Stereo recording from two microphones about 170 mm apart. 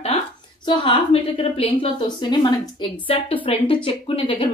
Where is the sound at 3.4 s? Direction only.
30° left (ahead or behind).